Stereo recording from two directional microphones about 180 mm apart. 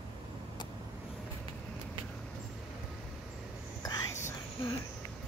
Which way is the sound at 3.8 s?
20° left (ahead or behind).